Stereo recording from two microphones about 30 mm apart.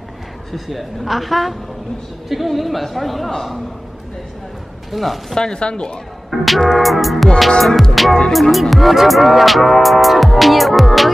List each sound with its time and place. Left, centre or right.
0.5 s music: centre
3.3 s a man's voice: centre
4.9 s music: centre
5.3 s speech: centre
5.6 s a woman's voice: left
6.3 s music: centre